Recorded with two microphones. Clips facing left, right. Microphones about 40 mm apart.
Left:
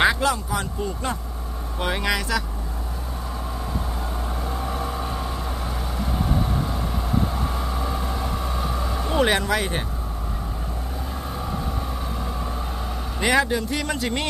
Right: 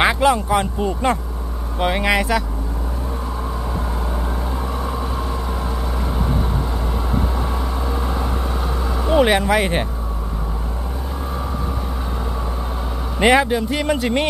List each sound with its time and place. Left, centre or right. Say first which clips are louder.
0.0 s a sound: right 4 dB; right
0.5 s speech: right 8 dB; right
1.8 s speech: right 6 dB; centre
7.3 s vehicle: right 3 dB; centre
8.0 s vehicle: right 4 dB; centre
9.6 s speech: right 7 dB; right
13.2 s speech: right 6 dB; right
13.5 s speech: right 5 dB; centre